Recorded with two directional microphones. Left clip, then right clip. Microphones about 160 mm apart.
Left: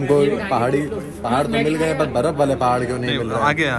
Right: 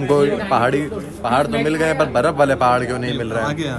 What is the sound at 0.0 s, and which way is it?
A man's voice, centre (ahead or behind).